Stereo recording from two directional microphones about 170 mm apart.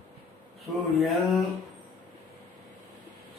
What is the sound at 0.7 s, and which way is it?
Speech, centre (ahead or behind).